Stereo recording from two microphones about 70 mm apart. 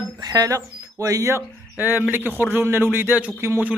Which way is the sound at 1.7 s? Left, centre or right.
Right.